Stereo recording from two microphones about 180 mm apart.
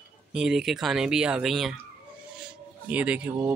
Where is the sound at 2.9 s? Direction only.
5° right (ahead or behind).